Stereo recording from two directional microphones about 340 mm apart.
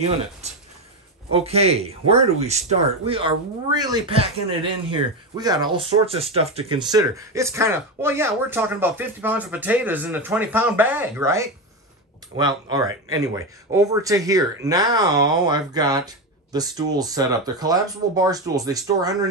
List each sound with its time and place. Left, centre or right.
1.3 s speech: centre